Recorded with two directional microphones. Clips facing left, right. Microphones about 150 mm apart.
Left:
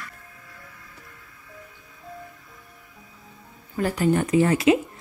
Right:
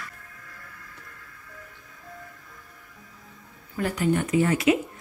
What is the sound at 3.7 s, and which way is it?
Speech, 35° left (ahead or behind).